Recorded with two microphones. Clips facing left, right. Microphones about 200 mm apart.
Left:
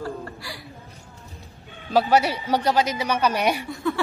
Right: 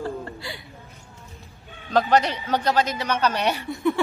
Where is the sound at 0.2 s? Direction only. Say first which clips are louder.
Right 1 dB; 25° right (ahead or behind).